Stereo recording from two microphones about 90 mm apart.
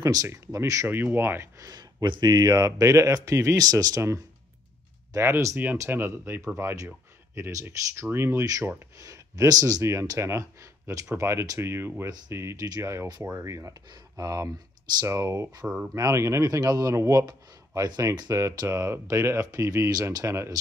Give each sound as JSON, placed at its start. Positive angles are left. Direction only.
{"t": 0.0, "sound": "speech", "side_deg": -40}
{"t": 0.8, "sound": "speech", "side_deg": -25}
{"t": 1.6, "sound": "speech", "side_deg": -45}
{"t": 10.1, "sound": "speech", "side_deg": -30}
{"t": 15.6, "sound": "speech", "side_deg": -10}
{"t": 15.9, "sound": "speech", "side_deg": -35}
{"t": 17.3, "sound": "speech", "side_deg": -45}